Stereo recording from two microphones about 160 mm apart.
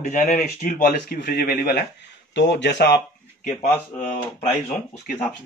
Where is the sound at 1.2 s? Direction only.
75° left (ahead or behind).